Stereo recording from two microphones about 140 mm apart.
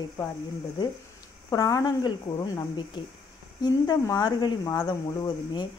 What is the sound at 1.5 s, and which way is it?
Speech, 25° left (ahead or behind).